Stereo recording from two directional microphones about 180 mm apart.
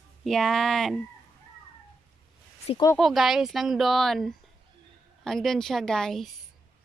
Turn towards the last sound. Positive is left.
turn(degrees=0)  # may be behind; listen again after turning